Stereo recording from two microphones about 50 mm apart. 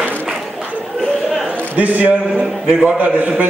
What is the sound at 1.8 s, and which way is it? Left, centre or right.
Speech, right.